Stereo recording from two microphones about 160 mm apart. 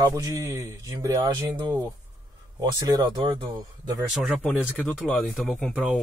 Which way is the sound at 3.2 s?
25° right (ahead or behind).